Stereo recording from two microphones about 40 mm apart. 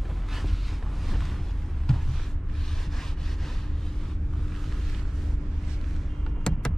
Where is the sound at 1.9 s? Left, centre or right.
Centre.